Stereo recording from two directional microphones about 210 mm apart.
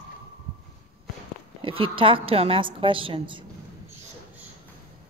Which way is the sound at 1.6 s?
25° right (ahead or behind).